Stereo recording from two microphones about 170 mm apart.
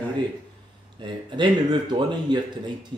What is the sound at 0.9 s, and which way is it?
Speech, 30° right (ahead or behind).